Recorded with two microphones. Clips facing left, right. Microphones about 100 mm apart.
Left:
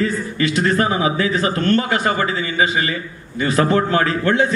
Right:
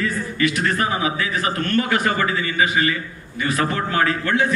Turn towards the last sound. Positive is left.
turn(degrees=30)  # may be behind; listen again after turning